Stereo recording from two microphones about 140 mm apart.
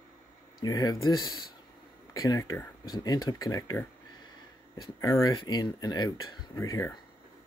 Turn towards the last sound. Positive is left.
turn(degrees=20)  # may be behind; listen again after turning